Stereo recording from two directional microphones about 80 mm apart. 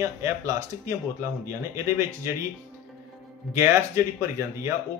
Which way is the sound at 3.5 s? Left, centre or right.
Right.